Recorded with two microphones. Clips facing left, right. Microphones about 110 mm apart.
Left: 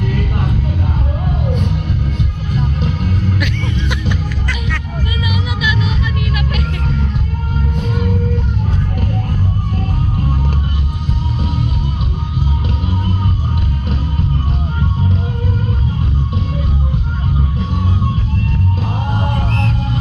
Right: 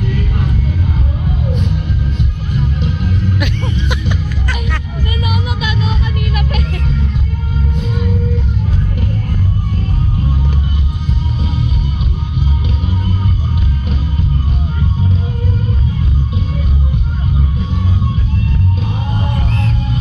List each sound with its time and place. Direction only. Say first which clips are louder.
0.1 s a sound: even; 50° left (ahead or behind)
2.5 s music: even; 45° left (ahead or behind)
5.2 s music: even; 45° right (ahead or behind)
19.2 s music: left 1 dB; 60° left (ahead or behind)